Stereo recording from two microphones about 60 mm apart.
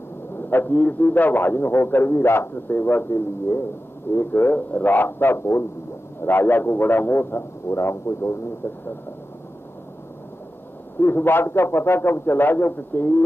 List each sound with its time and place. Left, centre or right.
0.5 s a man's voice: left
11.0 s a man's voice: left